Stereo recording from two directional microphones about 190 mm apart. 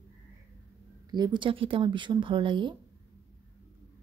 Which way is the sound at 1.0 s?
20° right (ahead or behind).